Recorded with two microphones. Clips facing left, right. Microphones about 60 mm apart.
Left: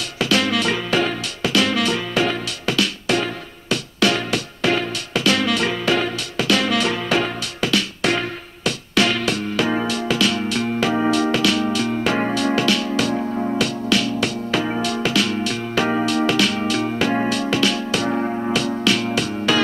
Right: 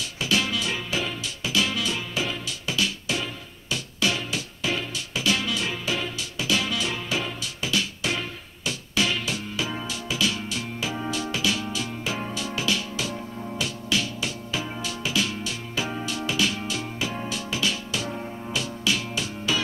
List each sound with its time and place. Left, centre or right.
0.2 s music: left